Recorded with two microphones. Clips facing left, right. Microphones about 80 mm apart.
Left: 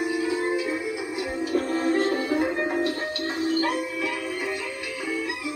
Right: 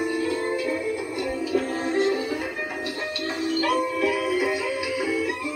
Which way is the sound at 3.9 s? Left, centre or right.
Centre.